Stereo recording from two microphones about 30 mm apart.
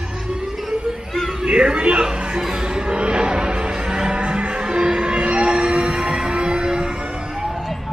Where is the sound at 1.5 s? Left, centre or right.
Right.